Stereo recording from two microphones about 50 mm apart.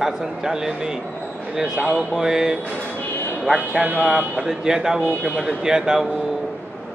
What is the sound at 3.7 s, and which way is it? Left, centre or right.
Speech, right.